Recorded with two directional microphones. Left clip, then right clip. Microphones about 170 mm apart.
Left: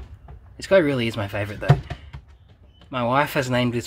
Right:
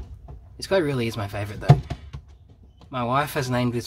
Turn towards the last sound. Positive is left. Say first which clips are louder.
# left 3 dB
turn(degrees=10)  # may be behind; listen again after turning